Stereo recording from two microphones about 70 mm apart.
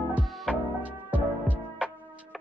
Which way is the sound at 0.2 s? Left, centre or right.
Centre.